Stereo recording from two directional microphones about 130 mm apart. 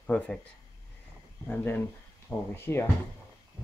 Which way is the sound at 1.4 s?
15° left (ahead or behind).